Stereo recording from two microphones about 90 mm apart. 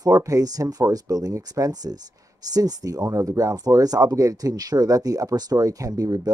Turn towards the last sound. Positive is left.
turn(degrees=-40)  # may be behind; listen again after turning